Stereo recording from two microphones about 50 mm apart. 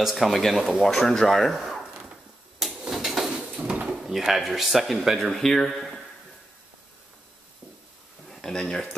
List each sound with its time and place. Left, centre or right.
0.0 s speech: centre
0.8 s speech: centre
2.6 s a sound: centre
3.5 s drawer open or close: right
3.9 s speech: centre
8.3 s speech: centre